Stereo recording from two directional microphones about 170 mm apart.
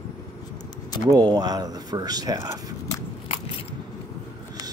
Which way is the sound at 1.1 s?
25° right (ahead or behind).